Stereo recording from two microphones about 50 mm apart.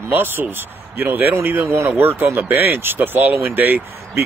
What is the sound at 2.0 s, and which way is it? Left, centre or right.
Speech, right.